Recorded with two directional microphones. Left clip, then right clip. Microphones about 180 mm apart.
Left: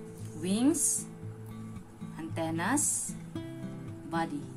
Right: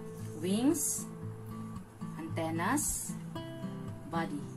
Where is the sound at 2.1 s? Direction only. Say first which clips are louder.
Left 2 dB; 35° left (ahead or behind).